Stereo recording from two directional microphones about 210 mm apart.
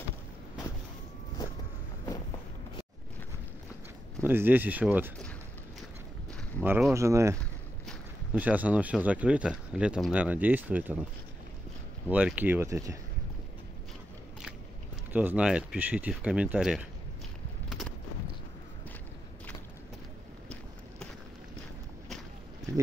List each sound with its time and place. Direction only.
4.2 s speech: 10° right (ahead or behind)
6.6 s speech: 10° right (ahead or behind)
12.1 s speech: 5° right (ahead or behind)
15.1 s speech: 5° right (ahead or behind)
17.6 s a sound: centre (ahead or behind)